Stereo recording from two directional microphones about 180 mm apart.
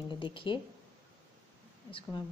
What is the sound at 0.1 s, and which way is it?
Speech, 30° left (ahead or behind).